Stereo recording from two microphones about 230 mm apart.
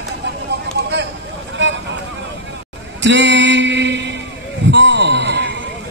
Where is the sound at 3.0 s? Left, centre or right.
Right.